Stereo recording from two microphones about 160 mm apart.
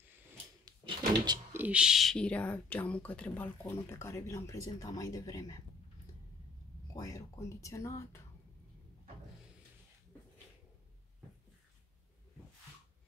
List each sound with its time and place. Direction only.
0.7 s door: 25° right (ahead or behind)
1.5 s speech: 10° right (ahead or behind); by 5.6 s 20° left (ahead or behind)
7.0 s speech: 20° left (ahead or behind)